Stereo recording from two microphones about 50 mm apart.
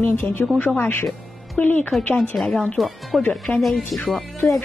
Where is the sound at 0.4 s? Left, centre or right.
Left.